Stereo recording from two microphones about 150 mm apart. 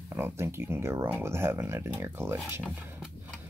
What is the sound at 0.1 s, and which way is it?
Speech, 15° right (ahead or behind).